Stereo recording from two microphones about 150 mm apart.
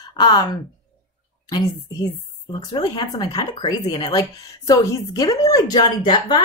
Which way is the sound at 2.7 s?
30° left (ahead or behind).